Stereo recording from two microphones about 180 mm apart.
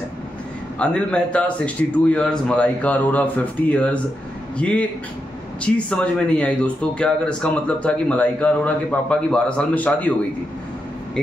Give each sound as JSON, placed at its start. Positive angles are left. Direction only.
{"t": 0.7, "sound": "a man's voice", "side_deg": 5}